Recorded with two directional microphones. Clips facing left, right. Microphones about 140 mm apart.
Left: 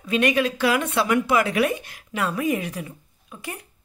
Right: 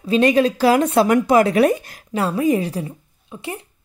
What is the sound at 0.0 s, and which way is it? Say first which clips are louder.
Speech: right 6 dB; 30° right (ahead or behind).